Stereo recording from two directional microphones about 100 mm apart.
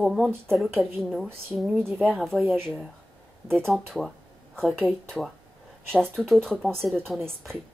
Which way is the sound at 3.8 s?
5° left (ahead or behind).